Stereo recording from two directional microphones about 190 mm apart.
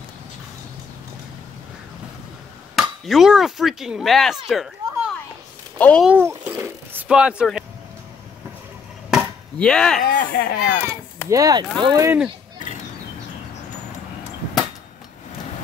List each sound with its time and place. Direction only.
2.7 s speech: centre (ahead or behind)
6.0 s speech: 10° right (ahead or behind)
9.1 s chop: 5° left (ahead or behind)
10.0 s speech: 50° left (ahead or behind)
11.2 s speech: 20° right (ahead or behind)